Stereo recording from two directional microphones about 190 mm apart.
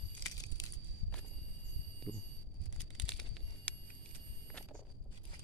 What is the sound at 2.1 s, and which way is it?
Speech, 5° left (ahead or behind).